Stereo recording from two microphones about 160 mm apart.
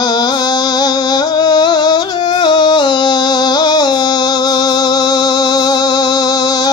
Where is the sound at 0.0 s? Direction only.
25° left (ahead or behind).